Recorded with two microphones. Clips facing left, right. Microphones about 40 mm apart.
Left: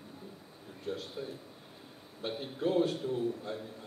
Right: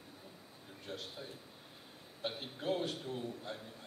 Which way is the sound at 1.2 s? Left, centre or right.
Centre.